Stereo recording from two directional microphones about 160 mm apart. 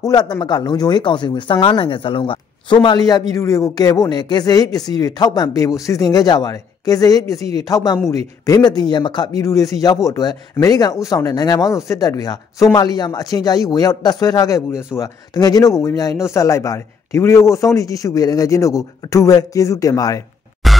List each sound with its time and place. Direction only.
0.0 s speech: 25° left (ahead or behind)
7.3 s speech: 40° right (ahead or behind)
7.6 s speech: 25° left (ahead or behind)
20.6 s music: centre (ahead or behind)